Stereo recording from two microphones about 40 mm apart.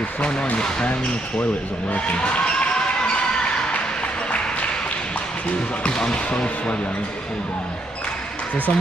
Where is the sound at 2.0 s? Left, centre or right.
Left.